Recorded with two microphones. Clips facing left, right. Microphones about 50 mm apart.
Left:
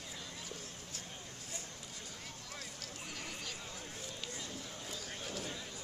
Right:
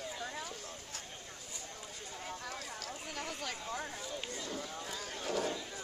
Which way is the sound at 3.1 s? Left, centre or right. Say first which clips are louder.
Right 5 dB; right.